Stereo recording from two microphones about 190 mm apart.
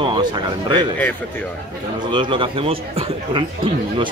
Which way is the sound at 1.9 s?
25° right (ahead or behind).